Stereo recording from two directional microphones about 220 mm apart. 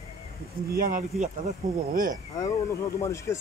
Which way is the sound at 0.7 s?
40° right (ahead or behind).